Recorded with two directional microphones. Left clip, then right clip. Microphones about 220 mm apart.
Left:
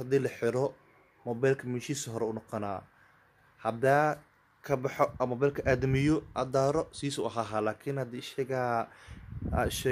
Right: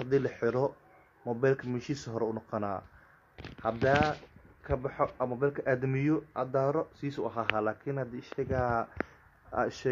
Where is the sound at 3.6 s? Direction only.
20° left (ahead or behind).